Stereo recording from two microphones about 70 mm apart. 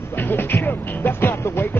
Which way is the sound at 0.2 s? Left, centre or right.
Left.